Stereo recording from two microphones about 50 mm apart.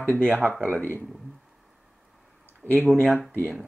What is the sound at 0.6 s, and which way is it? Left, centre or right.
Speech, left.